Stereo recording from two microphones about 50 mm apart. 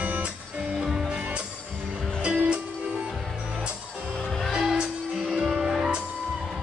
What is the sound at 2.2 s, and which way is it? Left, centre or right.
Music, right.